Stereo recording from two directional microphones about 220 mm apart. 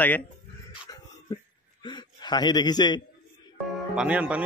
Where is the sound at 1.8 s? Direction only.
20° left (ahead or behind).